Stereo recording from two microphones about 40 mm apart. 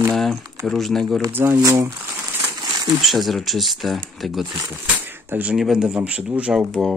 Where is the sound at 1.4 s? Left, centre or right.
Right.